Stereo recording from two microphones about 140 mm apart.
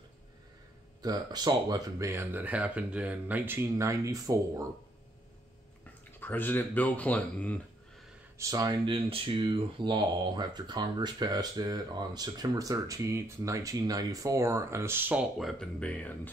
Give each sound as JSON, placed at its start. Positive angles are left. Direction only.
{"t": 1.0, "sound": "speech", "side_deg": -30}
{"t": 6.1, "sound": "speech", "side_deg": 15}
{"t": 8.4, "sound": "speech", "side_deg": -25}
{"t": 15.3, "sound": "speech", "side_deg": 0}